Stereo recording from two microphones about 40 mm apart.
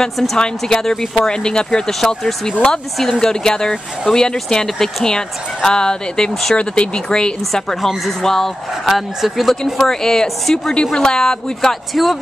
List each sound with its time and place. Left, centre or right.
0.0 s speech: centre
1.9 s speech: centre; by 7.6 s left
8.2 s speech: centre
8.8 s speech: centre
9.8 s speech: centre
10.7 s speech: centre
11.9 s speech: centre